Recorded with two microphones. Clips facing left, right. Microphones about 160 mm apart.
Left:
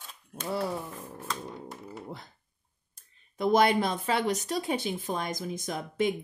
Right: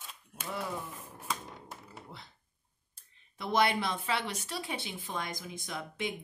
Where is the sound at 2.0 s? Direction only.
45° left (ahead or behind).